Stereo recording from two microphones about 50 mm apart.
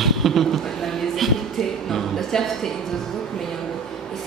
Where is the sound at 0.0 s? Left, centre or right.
Centre.